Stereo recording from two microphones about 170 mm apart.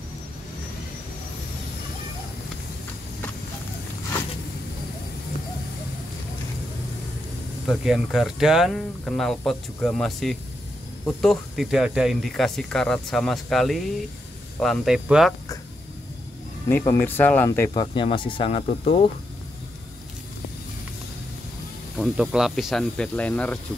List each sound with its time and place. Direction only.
7.6 s speech: 5° right (ahead or behind)
16.6 s speech: 10° left (ahead or behind)
17.7 s speech: 30° left (ahead or behind)
21.9 s speech: centre (ahead or behind)